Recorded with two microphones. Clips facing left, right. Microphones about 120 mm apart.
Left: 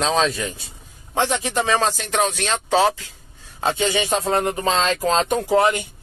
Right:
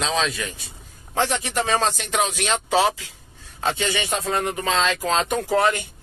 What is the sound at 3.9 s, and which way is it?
A man's voice, 30° left (ahead or behind).